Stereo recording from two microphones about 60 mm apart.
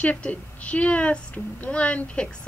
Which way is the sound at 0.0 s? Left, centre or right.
Left.